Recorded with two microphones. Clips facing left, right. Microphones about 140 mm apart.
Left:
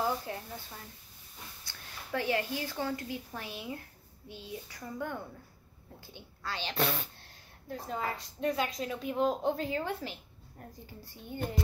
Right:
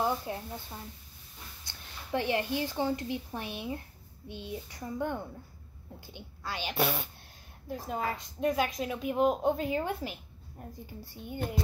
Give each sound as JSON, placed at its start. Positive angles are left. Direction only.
{"t": 0.0, "sound": "a woman's voice", "side_deg": -20}
{"t": 2.1, "sound": "a woman's voice", "side_deg": -20}